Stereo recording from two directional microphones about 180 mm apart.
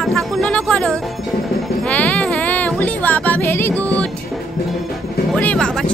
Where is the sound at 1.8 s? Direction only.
10° left (ahead or behind).